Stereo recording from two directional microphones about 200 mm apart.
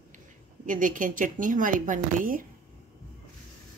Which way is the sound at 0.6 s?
40° right (ahead or behind).